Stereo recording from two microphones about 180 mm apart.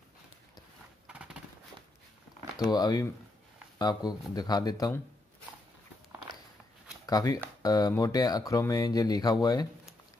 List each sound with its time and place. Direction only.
1.0 s horse: 5° right (ahead or behind)
2.6 s speech: 20° left (ahead or behind)
7.1 s speech: 20° left (ahead or behind)